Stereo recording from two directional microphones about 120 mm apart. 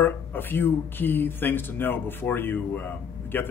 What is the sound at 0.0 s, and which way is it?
Speech, 15° left (ahead or behind).